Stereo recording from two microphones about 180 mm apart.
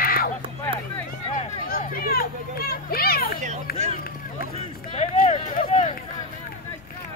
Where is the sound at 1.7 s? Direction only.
55° left (ahead or behind).